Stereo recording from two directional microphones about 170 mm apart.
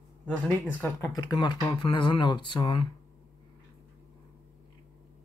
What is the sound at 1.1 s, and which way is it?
Speech, 25° left (ahead or behind).